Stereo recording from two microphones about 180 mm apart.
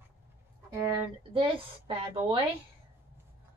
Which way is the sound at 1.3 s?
30° right (ahead or behind).